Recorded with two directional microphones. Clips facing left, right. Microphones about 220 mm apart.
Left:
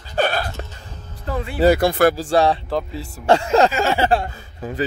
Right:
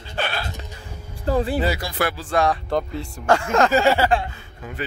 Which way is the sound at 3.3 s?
30° left (ahead or behind).